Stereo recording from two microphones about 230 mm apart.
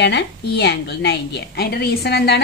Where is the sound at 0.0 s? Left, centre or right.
Left.